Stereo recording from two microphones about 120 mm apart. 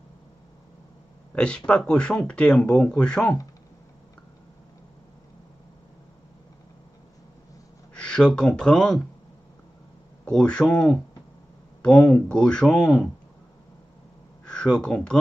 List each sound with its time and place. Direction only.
1.3 s speech: 10° left (ahead or behind)
7.9 s speech: 5° left (ahead or behind)
10.2 s speech: 10° left (ahead or behind)
14.4 s speech: 5° left (ahead or behind)